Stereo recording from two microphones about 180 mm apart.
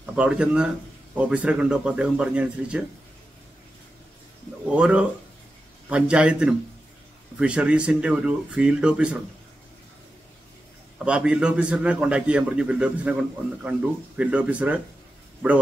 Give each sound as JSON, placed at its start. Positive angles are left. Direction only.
{"t": 0.0, "sound": "speech", "side_deg": -5}
{"t": 4.6, "sound": "speech", "side_deg": -5}
{"t": 11.1, "sound": "speech", "side_deg": -5}